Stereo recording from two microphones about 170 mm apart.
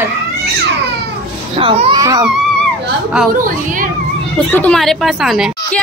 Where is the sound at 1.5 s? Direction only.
30° right (ahead or behind).